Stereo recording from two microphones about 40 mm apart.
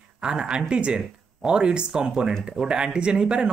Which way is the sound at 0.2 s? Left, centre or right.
Right.